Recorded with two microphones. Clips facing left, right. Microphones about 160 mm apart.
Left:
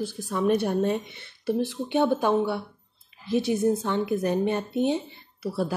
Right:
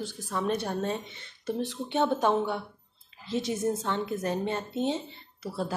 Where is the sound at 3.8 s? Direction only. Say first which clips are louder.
Left 5 dB; 15° left (ahead or behind).